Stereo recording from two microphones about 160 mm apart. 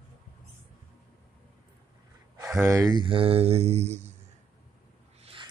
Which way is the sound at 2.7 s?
20° right (ahead or behind).